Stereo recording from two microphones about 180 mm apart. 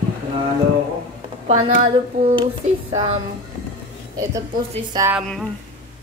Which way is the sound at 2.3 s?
30° right (ahead or behind).